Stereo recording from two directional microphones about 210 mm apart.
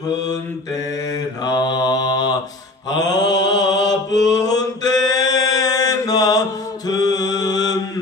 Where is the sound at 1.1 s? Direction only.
20° left (ahead or behind).